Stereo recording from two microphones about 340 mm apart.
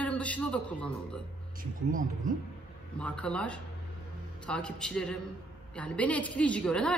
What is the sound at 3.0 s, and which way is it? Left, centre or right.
A woman's voice, centre.